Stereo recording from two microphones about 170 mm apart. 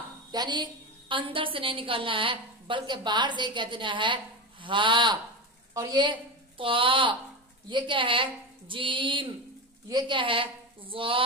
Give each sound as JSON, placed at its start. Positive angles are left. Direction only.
{"t": 0.3, "sound": "a woman's voice", "side_deg": -25}